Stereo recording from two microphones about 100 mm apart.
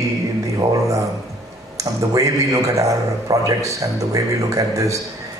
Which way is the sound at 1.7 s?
35° right (ahead or behind).